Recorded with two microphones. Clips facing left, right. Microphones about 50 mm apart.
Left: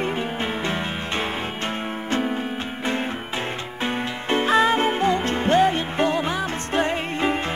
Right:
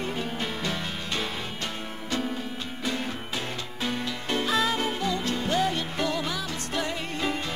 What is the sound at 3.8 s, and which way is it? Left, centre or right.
Music, left.